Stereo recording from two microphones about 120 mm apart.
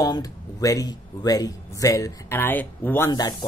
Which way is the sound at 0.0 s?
30° left (ahead or behind).